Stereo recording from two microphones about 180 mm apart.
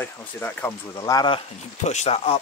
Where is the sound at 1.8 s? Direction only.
40° left (ahead or behind).